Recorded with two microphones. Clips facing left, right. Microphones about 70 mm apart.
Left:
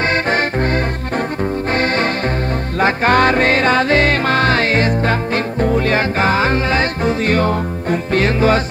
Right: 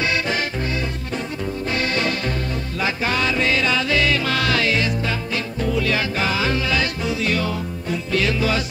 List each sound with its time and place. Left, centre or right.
0.1 s music: left